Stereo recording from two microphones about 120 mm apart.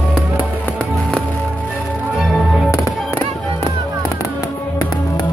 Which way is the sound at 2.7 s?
25° left (ahead or behind).